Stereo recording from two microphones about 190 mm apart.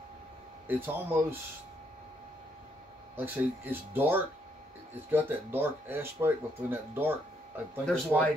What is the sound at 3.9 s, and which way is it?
Speech, 10° right (ahead or behind).